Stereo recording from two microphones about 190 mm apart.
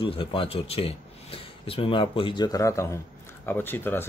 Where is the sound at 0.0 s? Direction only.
25° left (ahead or behind).